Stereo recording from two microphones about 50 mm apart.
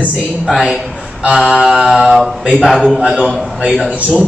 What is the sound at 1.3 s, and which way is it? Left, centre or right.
Speech, centre.